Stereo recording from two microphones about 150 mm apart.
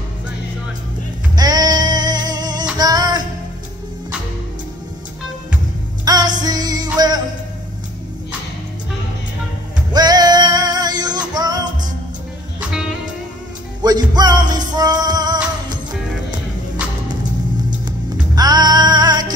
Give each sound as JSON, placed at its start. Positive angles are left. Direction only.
{"t": 1.3, "sound": "music", "side_deg": -25}
{"t": 6.0, "sound": "music", "side_deg": -25}
{"t": 9.9, "sound": "music", "side_deg": -25}
{"t": 13.8, "sound": "music", "side_deg": -25}
{"t": 17.8, "sound": "music", "side_deg": -25}